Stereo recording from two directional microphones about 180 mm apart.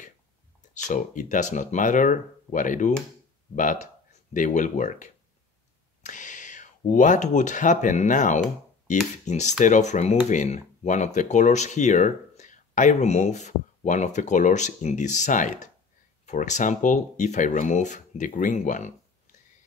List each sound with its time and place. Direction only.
0.8 s speech: 45° left (ahead or behind)